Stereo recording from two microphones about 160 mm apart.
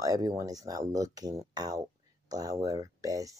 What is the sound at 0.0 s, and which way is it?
Speech, 25° right (ahead or behind).